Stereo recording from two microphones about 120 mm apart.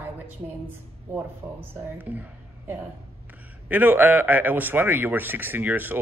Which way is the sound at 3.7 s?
15° right (ahead or behind).